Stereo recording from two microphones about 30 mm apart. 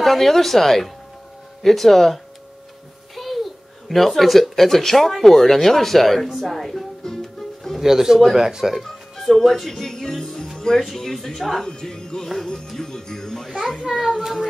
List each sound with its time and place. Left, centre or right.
0.0 s speech: centre
3.2 s a child's voice: centre
7.3 s music: centre
7.8 s a man's voice: centre
8.8 s music: centre
9.4 s a child's voice: centre
11.6 s speech: centre
12.7 s music: centre
14.0 s a child's voice: centre